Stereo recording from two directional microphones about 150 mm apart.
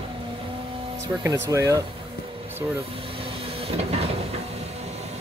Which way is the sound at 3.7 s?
45° right (ahead or behind).